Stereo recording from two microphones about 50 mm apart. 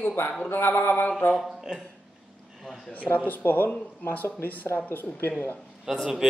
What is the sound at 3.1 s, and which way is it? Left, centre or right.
Speech, left.